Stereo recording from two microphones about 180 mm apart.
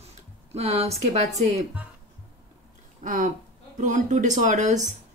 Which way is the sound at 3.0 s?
50° right (ahead or behind).